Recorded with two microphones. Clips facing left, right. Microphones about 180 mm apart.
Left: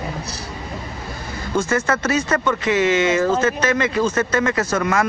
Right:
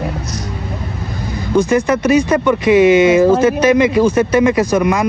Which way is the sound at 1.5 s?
15° right (ahead or behind).